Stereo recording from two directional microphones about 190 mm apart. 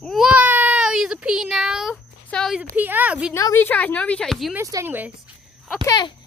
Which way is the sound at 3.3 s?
15° left (ahead or behind).